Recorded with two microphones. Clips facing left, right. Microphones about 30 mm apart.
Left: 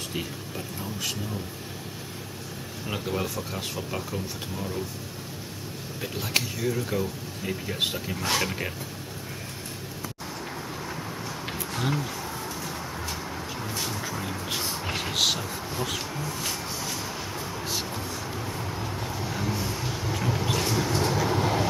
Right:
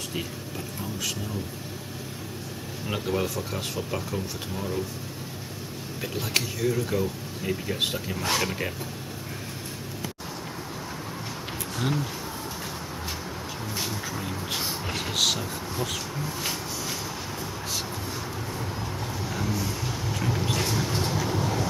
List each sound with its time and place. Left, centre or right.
2.9 s speech: centre
5.9 s speech: centre
13.7 s speech: centre
16.3 s a sound: centre
18.5 s vehicle: centre
21.1 s vehicle: centre